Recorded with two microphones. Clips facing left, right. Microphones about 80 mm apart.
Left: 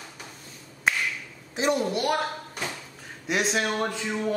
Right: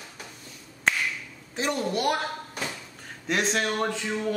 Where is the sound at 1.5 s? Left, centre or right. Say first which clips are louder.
Left 4 dB; centre.